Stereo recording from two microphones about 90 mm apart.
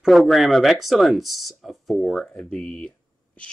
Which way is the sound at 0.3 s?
Centre (ahead or behind).